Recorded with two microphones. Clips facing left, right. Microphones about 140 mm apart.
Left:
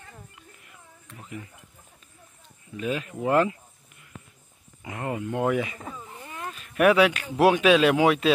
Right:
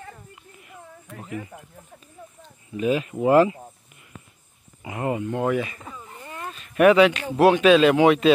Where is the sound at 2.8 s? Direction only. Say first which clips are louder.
Right 6 dB; 10° right (ahead or behind).